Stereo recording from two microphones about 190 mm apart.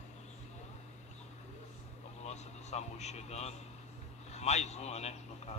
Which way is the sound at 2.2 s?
35° left (ahead or behind).